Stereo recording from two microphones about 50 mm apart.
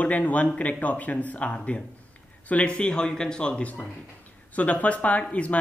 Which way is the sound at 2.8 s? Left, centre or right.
Centre.